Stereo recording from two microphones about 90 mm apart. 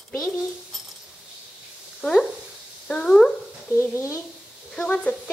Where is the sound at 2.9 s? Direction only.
5° left (ahead or behind).